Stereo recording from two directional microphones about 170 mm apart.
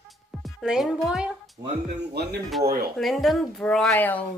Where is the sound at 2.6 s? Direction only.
65° right (ahead or behind).